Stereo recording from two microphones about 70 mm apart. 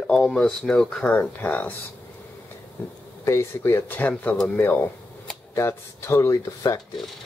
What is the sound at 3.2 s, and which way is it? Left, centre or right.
Speech, left.